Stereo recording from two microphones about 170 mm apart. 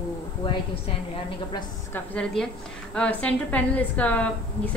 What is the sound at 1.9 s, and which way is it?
A woman's voice, 5° left (ahead or behind).